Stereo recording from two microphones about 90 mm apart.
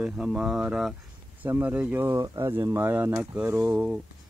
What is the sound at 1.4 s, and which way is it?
Speech, 20° right (ahead or behind).